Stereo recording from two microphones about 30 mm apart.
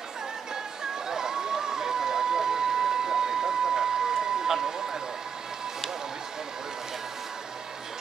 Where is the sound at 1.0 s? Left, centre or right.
Right.